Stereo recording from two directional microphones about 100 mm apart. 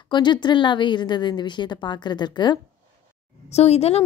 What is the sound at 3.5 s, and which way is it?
Speech, 90° left.